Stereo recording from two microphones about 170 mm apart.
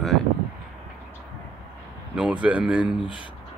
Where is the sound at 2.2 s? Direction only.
5° right (ahead or behind).